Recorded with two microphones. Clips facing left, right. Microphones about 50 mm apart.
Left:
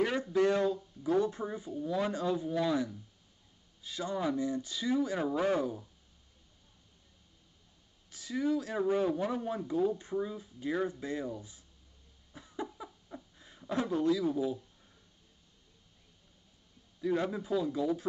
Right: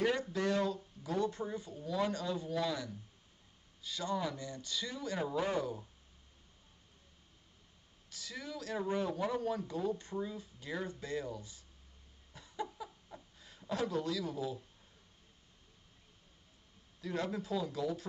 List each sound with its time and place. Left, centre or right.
0.1 s speech: left
8.1 s speech: centre
12.4 s a sound: left
17.0 s speech: centre